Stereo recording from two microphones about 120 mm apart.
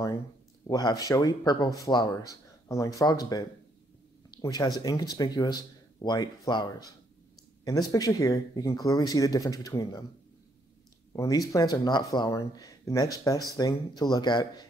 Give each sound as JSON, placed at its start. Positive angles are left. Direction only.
{"t": 0.7, "sound": "speech", "side_deg": 35}
{"t": 11.1, "sound": "speech", "side_deg": 30}